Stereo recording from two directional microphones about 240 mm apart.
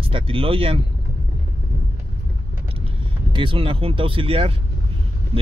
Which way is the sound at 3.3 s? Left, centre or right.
Right.